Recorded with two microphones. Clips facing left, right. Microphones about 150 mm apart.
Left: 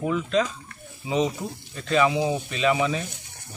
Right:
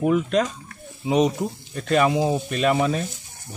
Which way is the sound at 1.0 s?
70° right (ahead or behind).